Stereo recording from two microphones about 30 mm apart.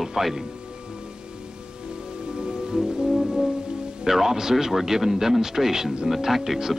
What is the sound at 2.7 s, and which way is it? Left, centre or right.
Music, right.